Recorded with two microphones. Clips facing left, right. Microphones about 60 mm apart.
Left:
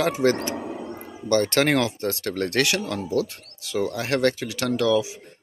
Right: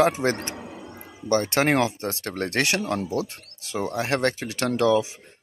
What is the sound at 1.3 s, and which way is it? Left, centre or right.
Speech, right.